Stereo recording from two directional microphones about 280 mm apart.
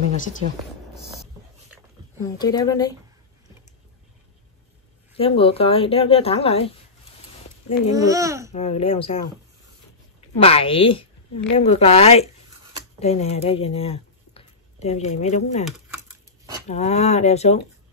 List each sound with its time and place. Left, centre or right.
2.3 s a woman's voice: centre
5.1 s a woman's voice: centre
7.9 s speech: centre
8.5 s a woman's voice: left
10.3 s a woman's voice: left
16.6 s a woman's voice: left